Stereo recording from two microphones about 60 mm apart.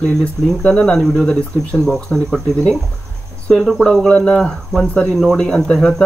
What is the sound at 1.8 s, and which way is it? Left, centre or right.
Speech, centre.